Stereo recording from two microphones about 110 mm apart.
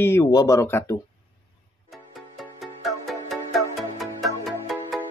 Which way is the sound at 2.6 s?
Centre (ahead or behind).